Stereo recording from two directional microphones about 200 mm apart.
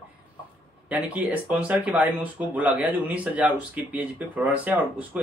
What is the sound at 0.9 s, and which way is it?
Speech, 5° right (ahead or behind).